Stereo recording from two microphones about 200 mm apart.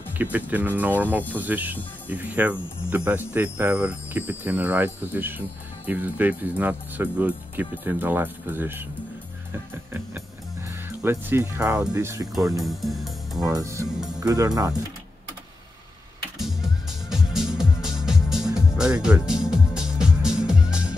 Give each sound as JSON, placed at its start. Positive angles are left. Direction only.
{"t": 0.2, "sound": "speech", "side_deg": -10}
{"t": 9.5, "sound": "music", "side_deg": -10}
{"t": 11.0, "sound": "speech", "side_deg": -10}
{"t": 12.6, "sound": "speech", "side_deg": 0}
{"t": 13.5, "sound": "speech", "side_deg": -15}
{"t": 17.1, "sound": "music", "side_deg": 0}